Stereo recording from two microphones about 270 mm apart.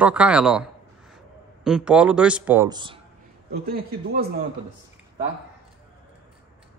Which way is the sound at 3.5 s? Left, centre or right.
Right.